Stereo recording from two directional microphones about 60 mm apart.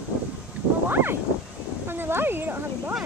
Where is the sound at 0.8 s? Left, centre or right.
Right.